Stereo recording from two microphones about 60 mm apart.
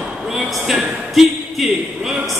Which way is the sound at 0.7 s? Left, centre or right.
Centre.